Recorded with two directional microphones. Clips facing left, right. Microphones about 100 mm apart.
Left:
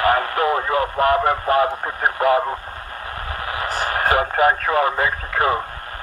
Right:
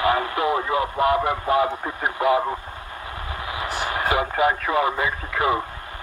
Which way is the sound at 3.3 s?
50° left (ahead or behind).